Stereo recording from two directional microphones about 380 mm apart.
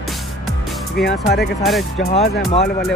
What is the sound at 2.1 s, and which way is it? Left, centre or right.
Speech, centre.